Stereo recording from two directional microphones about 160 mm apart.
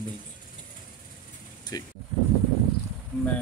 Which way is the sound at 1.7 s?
25° left (ahead or behind).